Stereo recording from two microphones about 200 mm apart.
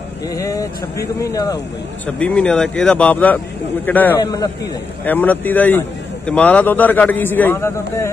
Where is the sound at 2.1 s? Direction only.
5° left (ahead or behind).